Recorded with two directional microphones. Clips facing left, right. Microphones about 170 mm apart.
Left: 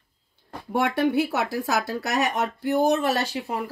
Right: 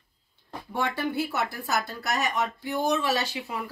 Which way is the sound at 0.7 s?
65° left (ahead or behind).